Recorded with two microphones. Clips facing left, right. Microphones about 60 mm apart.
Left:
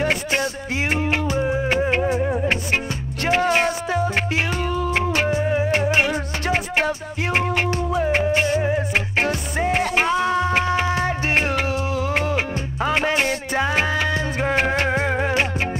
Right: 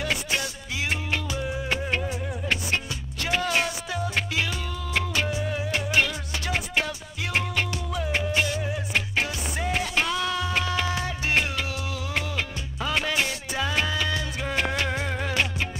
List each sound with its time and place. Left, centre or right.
0.0 s music: left